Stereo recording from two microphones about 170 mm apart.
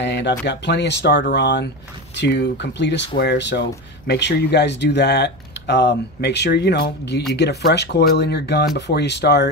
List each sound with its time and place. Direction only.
0.0 s speech: 90° left
4.1 s speech: 75° left (ahead or behind)